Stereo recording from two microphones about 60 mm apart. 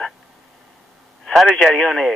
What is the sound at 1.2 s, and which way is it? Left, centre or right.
Speech, centre.